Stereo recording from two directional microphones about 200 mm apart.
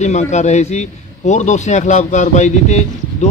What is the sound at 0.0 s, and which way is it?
A man's voice, 35° left (ahead or behind).